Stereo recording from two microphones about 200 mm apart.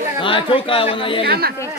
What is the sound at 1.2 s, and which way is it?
Speech, 50° right (ahead or behind).